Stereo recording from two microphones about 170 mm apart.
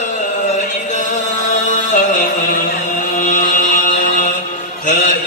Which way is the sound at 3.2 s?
50° left (ahead or behind).